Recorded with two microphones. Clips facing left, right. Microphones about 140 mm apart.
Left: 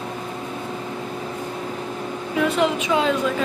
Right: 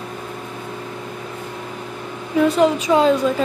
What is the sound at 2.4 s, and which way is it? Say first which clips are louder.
Speech: right 5 dB; 40° right (ahead or behind).